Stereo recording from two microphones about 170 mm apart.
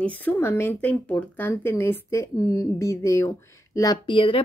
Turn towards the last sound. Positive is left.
turn(degrees=30)  # may be behind; listen again after turning